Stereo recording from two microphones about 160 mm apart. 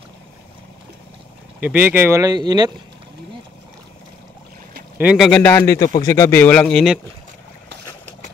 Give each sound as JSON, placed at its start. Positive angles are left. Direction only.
{"t": 1.6, "sound": "speech", "side_deg": -10}
{"t": 4.9, "sound": "a man's voice", "side_deg": -5}